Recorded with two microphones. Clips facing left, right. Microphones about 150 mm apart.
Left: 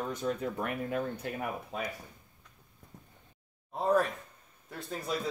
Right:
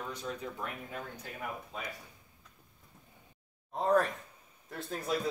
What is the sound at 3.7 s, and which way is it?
Speech, centre (ahead or behind).